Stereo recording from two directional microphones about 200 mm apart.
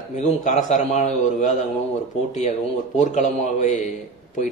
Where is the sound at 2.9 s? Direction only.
35° left (ahead or behind).